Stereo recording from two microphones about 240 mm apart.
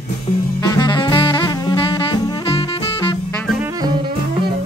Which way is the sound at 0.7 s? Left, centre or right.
Centre.